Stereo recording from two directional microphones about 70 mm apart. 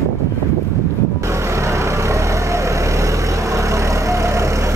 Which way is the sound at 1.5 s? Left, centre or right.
Right.